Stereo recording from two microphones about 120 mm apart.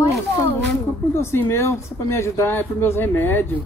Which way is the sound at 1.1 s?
20° left (ahead or behind).